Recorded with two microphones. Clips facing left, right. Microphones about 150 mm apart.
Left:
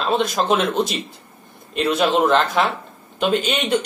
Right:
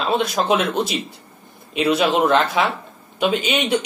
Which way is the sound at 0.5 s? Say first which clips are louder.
Even; centre (ahead or behind).